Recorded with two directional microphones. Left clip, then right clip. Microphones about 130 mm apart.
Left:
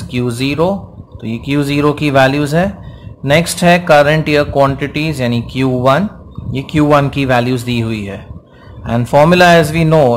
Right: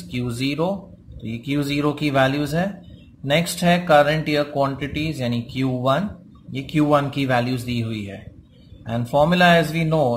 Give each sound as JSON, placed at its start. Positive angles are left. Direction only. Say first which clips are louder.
{"t": 0.1, "sound": "speech", "louder": "left 9 dB", "side_deg": 25}